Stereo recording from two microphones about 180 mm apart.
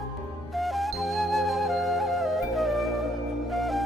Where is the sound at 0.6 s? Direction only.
Centre (ahead or behind).